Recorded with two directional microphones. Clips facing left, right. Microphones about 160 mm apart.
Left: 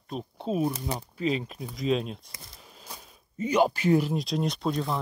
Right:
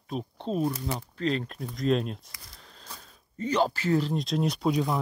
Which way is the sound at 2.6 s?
10° left (ahead or behind).